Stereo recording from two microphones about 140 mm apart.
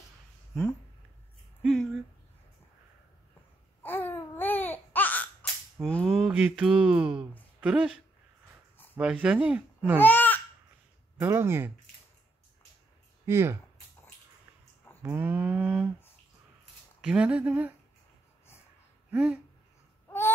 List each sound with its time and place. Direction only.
1.6 s speech: centre (ahead or behind)
3.8 s babbling: 15° left (ahead or behind)
5.9 s mantra: 5° left (ahead or behind)
6.3 s speech: 10° right (ahead or behind)
8.9 s speech: 10° right (ahead or behind)
9.9 s speech: 15° left (ahead or behind)
11.2 s speech: 20° right (ahead or behind)
13.2 s speech: 20° right (ahead or behind)
15.0 s speech: 15° right (ahead or behind)
17.0 s speech: 5° right (ahead or behind)
19.0 s speech: 10° right (ahead or behind)